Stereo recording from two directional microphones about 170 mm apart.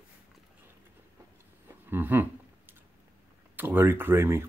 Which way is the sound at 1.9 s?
10° right (ahead or behind).